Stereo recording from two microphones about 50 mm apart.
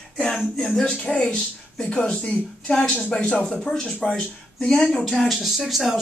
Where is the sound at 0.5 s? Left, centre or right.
Centre.